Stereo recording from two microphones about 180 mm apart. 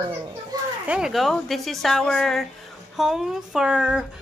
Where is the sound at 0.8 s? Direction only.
5° right (ahead or behind).